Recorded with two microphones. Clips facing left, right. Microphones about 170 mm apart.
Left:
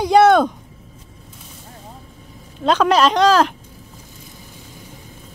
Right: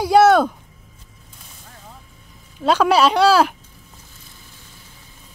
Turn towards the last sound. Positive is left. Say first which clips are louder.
# even
turn(degrees=-10)  # may be behind; listen again after turning